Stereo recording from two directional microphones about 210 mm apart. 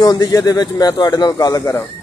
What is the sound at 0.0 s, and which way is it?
A man's voice, 20° left (ahead or behind).